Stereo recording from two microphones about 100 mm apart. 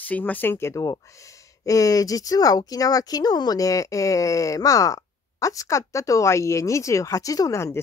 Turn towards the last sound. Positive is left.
turn(degrees=30)  # may be behind; listen again after turning